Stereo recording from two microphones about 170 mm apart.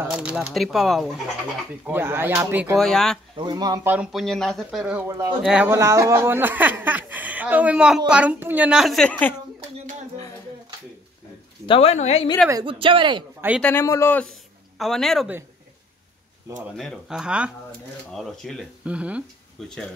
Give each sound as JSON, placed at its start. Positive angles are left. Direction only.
{"t": 0.0, "sound": "speech", "side_deg": -5}
{"t": 1.9, "sound": "speech", "side_deg": -15}
{"t": 2.8, "sound": "speech", "side_deg": 0}
{"t": 3.3, "sound": "speech", "side_deg": -25}
{"t": 3.8, "sound": "speech", "side_deg": -10}
{"t": 5.0, "sound": "speech", "side_deg": -20}
{"t": 5.4, "sound": "speech", "side_deg": -5}
{"t": 5.7, "sound": "speech", "side_deg": -15}
{"t": 11.6, "sound": "speech", "side_deg": 35}
{"t": 12.6, "sound": "speech", "side_deg": -30}
{"t": 13.6, "sound": "a man's voice", "side_deg": 10}
{"t": 16.7, "sound": "speech", "side_deg": 0}